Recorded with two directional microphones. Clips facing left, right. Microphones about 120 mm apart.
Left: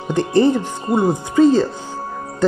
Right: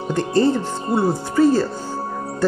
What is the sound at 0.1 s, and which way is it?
Speech, 20° left (ahead or behind).